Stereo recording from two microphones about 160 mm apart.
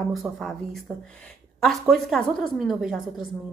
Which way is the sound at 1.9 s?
Centre (ahead or behind).